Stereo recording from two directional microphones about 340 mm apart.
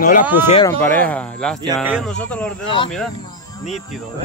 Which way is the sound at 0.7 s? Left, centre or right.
Centre.